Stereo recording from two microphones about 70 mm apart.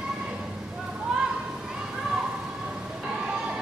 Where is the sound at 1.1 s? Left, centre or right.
Centre.